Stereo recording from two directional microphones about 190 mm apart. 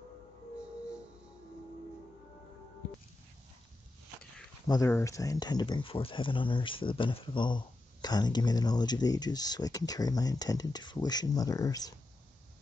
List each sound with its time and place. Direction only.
4.6 s speech: 15° left (ahead or behind)